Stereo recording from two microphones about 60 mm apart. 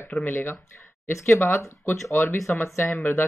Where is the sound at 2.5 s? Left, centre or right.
Left.